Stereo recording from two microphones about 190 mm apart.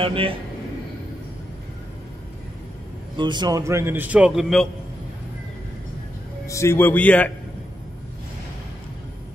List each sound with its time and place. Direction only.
0.0 s a man's voice: 30° right (ahead or behind)
3.2 s a man's voice: 25° right (ahead or behind); by 4.6 s centre (ahead or behind)
6.4 s a man's voice: 15° left (ahead or behind)